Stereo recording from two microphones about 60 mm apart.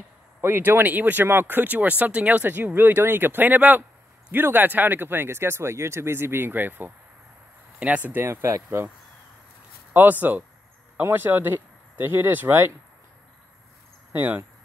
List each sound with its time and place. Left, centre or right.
0.4 s speech: right
8.3 s speech: right
8.6 s speech: right
10.3 s speech: right